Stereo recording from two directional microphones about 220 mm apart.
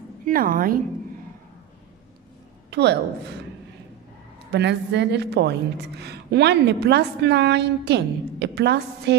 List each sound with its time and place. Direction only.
0.2 s a woman's voice: 40° right (ahead or behind)
2.7 s a woman's voice: 50° right (ahead or behind)
4.5 s a woman's voice: 50° right (ahead or behind)